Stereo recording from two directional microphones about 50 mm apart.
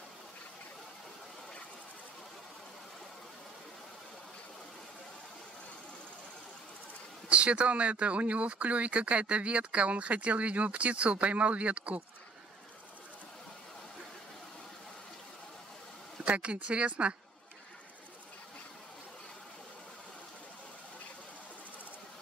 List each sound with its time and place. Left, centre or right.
7.2 s speech: right
16.3 s speech: right